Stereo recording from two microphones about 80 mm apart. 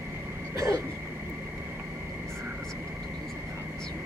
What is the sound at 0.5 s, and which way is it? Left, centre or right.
Throat clearing, right.